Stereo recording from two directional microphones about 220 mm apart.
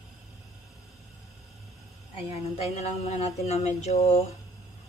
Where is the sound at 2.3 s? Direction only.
30° left (ahead or behind).